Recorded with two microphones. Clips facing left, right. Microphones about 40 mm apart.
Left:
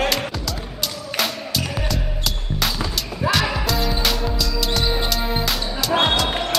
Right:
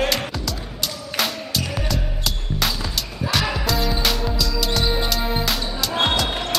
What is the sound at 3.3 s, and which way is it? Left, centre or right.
Music, centre.